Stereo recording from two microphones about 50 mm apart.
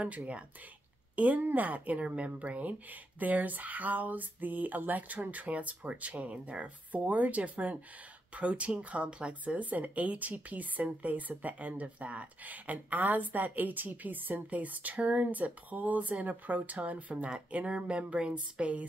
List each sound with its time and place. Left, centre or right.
0.0 s speech: right